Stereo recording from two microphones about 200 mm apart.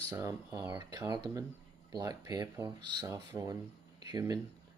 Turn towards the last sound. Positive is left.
turn(degrees=-20)  # may be behind; listen again after turning